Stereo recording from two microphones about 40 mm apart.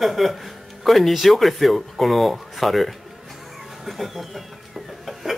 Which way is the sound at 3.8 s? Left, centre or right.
Centre.